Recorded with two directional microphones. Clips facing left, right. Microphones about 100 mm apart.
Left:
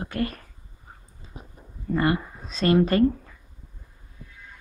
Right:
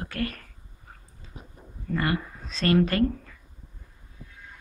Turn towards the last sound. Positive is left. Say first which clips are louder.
# left 4 dB
turn(degrees=20)  # may be behind; listen again after turning